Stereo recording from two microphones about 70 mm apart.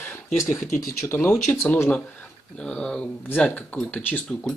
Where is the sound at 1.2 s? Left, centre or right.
Left.